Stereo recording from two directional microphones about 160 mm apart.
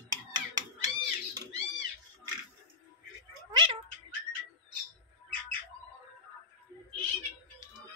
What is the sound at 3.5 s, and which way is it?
Cat, 30° right (ahead or behind).